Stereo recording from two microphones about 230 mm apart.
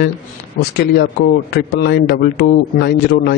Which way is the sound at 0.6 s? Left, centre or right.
Left.